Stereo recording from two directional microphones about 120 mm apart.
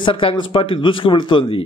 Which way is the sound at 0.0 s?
45° left (ahead or behind).